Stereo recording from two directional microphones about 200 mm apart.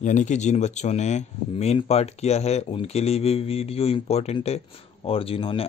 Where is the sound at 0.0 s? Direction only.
40° left (ahead or behind).